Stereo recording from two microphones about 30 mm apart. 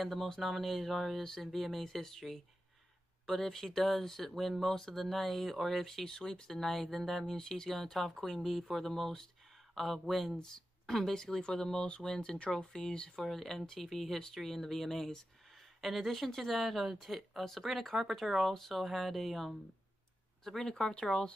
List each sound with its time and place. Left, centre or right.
0.0 s speech: centre
6.0 s speech: left
10.3 s speech: left
10.9 s speech: centre
13.3 s speech: centre
15.5 s a sound: centre
16.3 s speech: centre
20.4 s speech: centre
20.9 s speech: left